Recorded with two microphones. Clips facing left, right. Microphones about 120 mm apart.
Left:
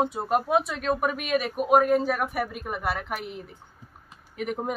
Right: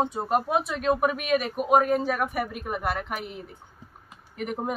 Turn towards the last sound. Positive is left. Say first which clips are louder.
# even
turn(degrees=0)  # may be behind; listen again after turning